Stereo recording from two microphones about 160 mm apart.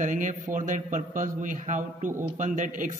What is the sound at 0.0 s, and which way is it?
A man's voice, 50° right (ahead or behind).